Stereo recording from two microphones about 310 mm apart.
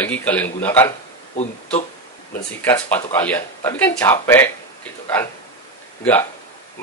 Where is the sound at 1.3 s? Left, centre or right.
Left.